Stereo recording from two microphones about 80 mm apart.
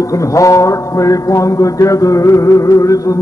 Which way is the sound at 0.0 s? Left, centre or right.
Left.